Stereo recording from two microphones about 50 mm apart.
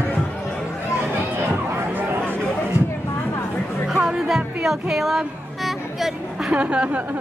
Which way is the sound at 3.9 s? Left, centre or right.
Centre.